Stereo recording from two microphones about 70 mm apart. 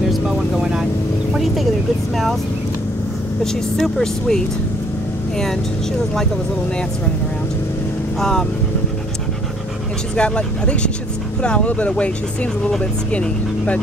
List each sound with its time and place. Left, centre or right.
0.1 s vehicle: centre
1.3 s a sound: centre
3.7 s speech: centre
8.2 s speech: centre
10.1 s speech: centre
13.1 s speech: centre